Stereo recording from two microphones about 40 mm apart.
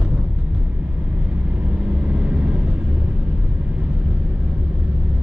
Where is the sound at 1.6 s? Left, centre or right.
Right.